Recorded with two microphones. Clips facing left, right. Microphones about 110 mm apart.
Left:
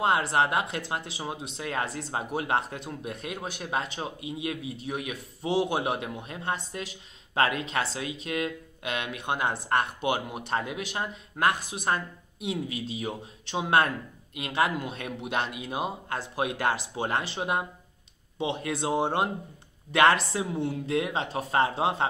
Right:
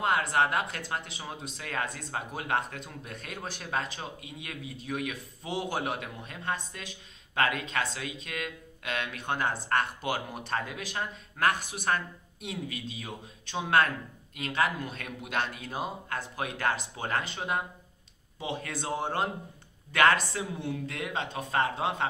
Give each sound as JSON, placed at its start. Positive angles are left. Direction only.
{"t": 0.0, "sound": "speech", "side_deg": 30}